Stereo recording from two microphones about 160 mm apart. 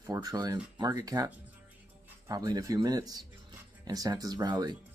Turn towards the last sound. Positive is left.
turn(degrees=-25)  # may be behind; listen again after turning